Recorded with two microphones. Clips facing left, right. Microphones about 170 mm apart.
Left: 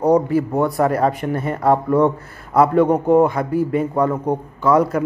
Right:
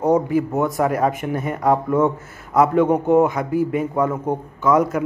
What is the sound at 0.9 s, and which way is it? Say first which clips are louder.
Speech: left 2 dB; 15° right (ahead or behind).